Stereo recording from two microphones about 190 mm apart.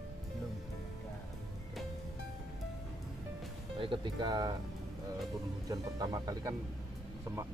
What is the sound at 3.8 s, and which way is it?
Music, 25° right (ahead or behind).